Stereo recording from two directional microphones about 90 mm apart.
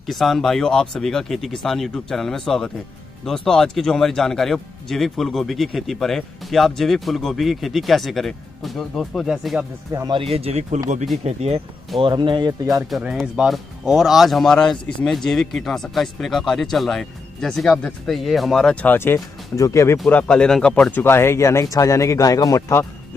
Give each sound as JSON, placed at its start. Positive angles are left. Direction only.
{"t": 0.0, "sound": "speech", "side_deg": 0}
{"t": 10.0, "sound": "speech", "side_deg": -75}
{"t": 12.0, "sound": "speech", "side_deg": -60}
{"t": 13.0, "sound": "speech", "side_deg": -10}
{"t": 18.9, "sound": "speech", "side_deg": 25}
{"t": 19.1, "sound": "speech", "side_deg": 35}
{"t": 20.1, "sound": "speech", "side_deg": 15}
{"t": 21.0, "sound": "speech", "side_deg": 25}